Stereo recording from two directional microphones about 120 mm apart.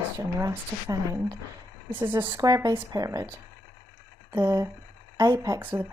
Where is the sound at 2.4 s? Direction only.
30° right (ahead or behind).